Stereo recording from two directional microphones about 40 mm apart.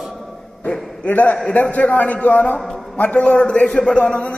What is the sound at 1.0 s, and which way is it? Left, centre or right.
A man's voice, left.